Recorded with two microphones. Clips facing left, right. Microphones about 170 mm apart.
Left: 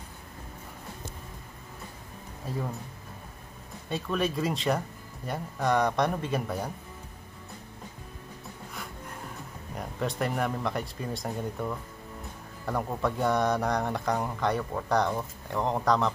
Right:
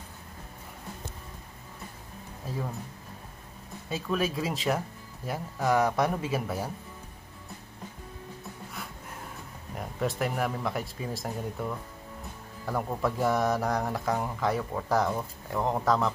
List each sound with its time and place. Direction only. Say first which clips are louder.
3.9 s speech: even; centre (ahead or behind)
9.8 s speech: right 1 dB; 5° right (ahead or behind)